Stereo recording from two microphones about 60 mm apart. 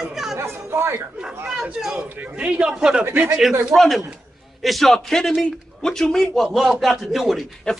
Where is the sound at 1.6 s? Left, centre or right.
Centre.